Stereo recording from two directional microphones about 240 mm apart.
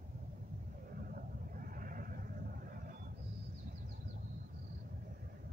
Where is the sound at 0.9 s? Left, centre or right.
Right.